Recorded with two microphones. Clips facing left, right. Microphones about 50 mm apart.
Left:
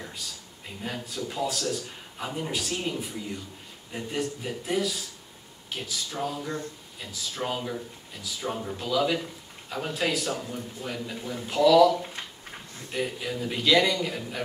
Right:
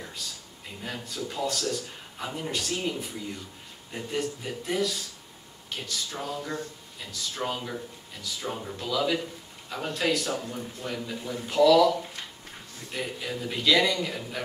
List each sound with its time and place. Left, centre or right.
0.2 s a man's voice: centre
12.9 s a man's voice: centre